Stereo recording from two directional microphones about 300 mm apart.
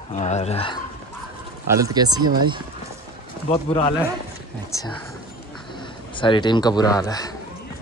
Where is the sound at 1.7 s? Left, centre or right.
Centre.